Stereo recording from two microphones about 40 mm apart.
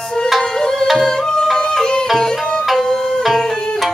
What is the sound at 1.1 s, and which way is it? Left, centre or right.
Music, centre.